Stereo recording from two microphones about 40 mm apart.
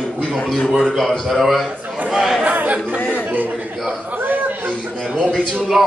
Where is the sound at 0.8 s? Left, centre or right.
Centre.